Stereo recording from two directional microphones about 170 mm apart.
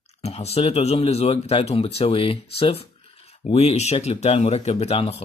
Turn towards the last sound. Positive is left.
turn(degrees=35)  # may be behind; listen again after turning